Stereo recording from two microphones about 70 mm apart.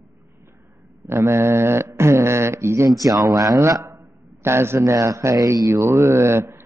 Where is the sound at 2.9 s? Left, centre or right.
Right.